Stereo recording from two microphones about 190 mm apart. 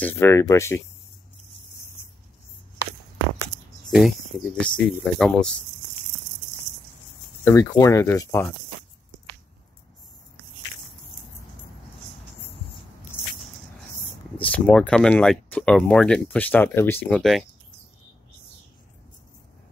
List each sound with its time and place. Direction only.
0.0 s speech: 15° left (ahead or behind)
3.9 s speech: centre (ahead or behind)
7.4 s speech: 15° left (ahead or behind)
13.9 s speech: 5° left (ahead or behind)